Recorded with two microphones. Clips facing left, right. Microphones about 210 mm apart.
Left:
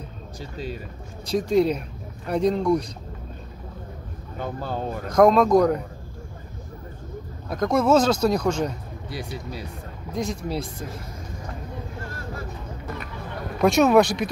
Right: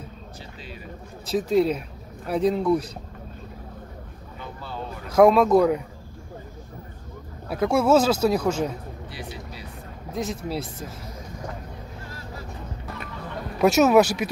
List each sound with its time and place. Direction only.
0.4 s speech: 40° left (ahead or behind)
1.2 s speech: 5° right (ahead or behind)
4.4 s speech: 45° left (ahead or behind)
5.1 s speech: 5° right (ahead or behind)
7.4 s speech: 10° right (ahead or behind)
9.1 s speech: 45° left (ahead or behind)
10.1 s speech: centre (ahead or behind)
12.1 s vehicle: 50° left (ahead or behind)
13.6 s speech: 5° right (ahead or behind)